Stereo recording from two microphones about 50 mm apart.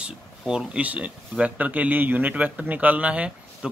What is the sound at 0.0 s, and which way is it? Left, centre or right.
A man's voice, centre.